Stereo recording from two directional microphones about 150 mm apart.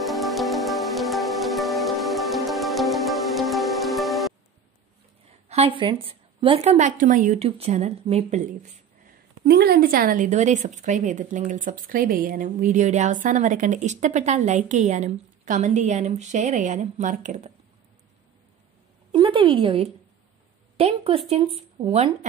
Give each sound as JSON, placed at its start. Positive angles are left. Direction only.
{"t": 0.0, "sound": "music", "side_deg": 0}
{"t": 5.5, "sound": "a woman's voice", "side_deg": -40}
{"t": 7.3, "sound": "speech", "side_deg": -40}
{"t": 9.4, "sound": "a woman's voice", "side_deg": -90}
{"t": 19.1, "sound": "a woman's voice", "side_deg": -35}